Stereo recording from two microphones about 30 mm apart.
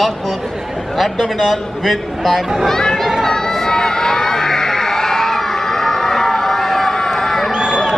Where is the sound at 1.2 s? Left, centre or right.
Centre.